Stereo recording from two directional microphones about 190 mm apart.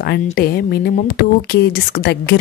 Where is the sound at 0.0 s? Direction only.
55° left (ahead or behind).